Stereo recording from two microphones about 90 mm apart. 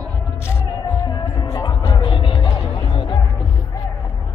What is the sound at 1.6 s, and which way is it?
Music, 65° left (ahead or behind).